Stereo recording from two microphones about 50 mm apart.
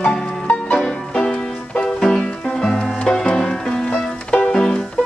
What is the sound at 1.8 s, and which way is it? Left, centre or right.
Music, centre.